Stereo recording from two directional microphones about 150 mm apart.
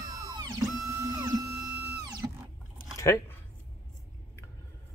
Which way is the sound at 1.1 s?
20° right (ahead or behind).